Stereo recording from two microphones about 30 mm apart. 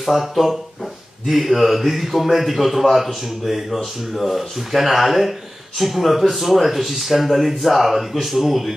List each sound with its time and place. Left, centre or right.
0.0 s a man's voice: centre